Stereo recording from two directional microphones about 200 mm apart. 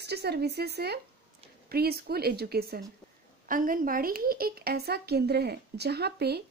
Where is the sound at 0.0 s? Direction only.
55° right (ahead or behind).